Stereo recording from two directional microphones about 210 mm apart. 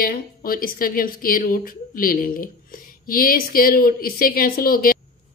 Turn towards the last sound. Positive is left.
turn(degrees=45)  # may be behind; listen again after turning